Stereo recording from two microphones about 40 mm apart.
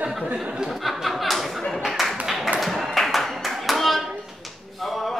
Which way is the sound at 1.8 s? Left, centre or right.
Centre.